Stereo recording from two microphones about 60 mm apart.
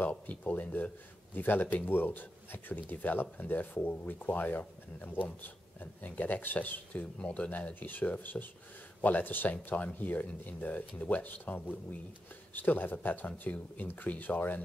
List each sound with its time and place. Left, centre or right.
0.0 s speech: left